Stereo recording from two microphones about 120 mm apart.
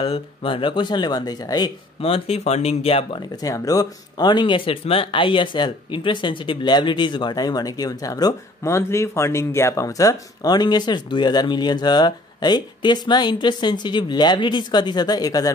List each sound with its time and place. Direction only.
0.0 s speech: 50° left (ahead or behind); by 1.7 s 35° left (ahead or behind)
2.0 s speech: 50° left (ahead or behind)
3.4 s speech: 30° left (ahead or behind)